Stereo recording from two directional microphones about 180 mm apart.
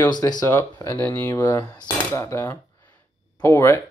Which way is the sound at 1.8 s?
15° left (ahead or behind).